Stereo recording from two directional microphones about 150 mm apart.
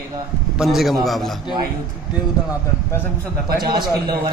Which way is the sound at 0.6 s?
Centre (ahead or behind).